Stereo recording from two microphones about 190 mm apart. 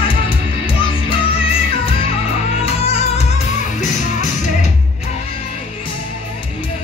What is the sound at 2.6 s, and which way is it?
Music, 30° left (ahead or behind).